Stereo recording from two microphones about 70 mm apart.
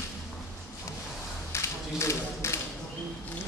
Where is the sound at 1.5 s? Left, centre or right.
Left.